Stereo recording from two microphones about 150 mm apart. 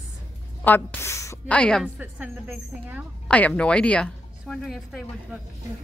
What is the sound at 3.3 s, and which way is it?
Speech, 10° left (ahead or behind).